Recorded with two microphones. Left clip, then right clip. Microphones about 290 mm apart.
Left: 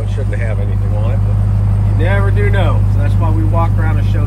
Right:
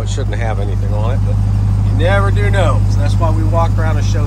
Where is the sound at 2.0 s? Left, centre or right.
Centre.